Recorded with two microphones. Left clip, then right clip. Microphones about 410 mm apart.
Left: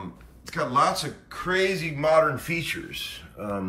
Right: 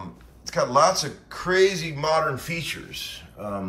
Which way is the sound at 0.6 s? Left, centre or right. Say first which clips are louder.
Right 3 dB; centre.